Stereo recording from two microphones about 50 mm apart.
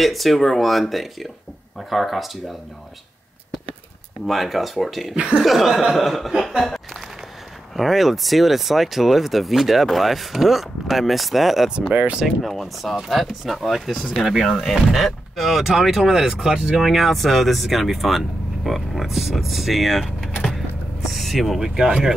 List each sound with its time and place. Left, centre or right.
0.0 s speech: centre
4.3 s speech: centre
5.1 s speech: right
5.4 s speech: centre
11.9 s speech: right
12.4 s speech: centre
21.5 s speech: centre